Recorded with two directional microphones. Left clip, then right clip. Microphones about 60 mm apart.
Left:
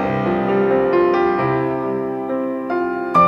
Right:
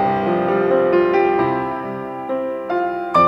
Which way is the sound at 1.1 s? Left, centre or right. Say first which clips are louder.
Right 1 dB; centre.